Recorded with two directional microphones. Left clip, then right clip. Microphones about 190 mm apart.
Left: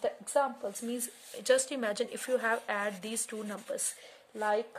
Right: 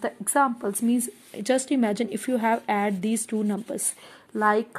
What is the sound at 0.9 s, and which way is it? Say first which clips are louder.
Speech: right 10 dB; 15° right (ahead or behind).